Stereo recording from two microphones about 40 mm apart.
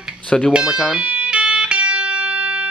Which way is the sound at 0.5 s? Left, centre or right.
Right.